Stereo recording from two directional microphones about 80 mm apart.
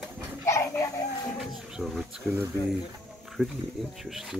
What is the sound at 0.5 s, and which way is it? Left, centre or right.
Dog, left.